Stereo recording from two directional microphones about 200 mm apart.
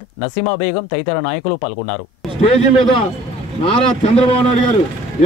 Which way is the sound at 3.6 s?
25° left (ahead or behind).